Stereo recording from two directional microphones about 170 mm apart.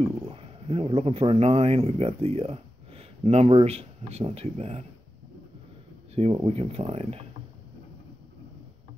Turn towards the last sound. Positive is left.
turn(degrees=-35)  # may be behind; listen again after turning